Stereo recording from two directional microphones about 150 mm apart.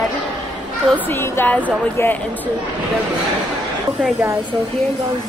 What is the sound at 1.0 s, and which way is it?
A woman's voice, 15° left (ahead or behind).